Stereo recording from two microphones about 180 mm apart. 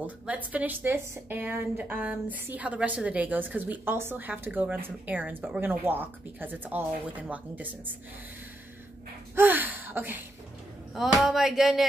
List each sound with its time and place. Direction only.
0.0 s a woman's voice: 10° right (ahead or behind)
9.3 s a sound: 10° right (ahead or behind)
11.0 s speech: centre (ahead or behind)